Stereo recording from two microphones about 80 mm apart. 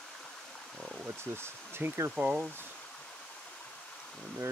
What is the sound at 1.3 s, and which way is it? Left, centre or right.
Speech, right.